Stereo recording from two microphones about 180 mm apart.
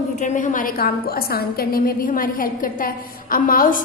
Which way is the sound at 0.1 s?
45° left (ahead or behind).